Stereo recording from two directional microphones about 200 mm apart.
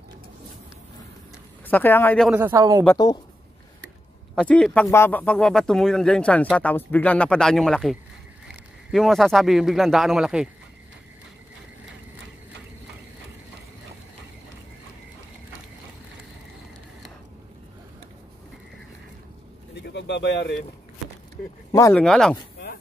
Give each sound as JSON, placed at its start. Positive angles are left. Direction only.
{"t": 1.7, "sound": "speech", "side_deg": 10}
{"t": 2.2, "sound": "a man's voice", "side_deg": -10}
{"t": 4.4, "sound": "speech", "side_deg": 5}
{"t": 19.7, "sound": "bird", "side_deg": 60}
{"t": 21.7, "sound": "speech", "side_deg": 15}
{"t": 22.0, "sound": "speech", "side_deg": 5}